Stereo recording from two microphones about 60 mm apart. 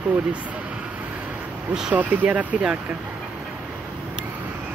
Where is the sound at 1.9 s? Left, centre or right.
Right.